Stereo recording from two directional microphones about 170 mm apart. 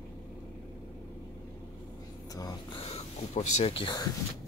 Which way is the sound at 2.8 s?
40° left (ahead or behind).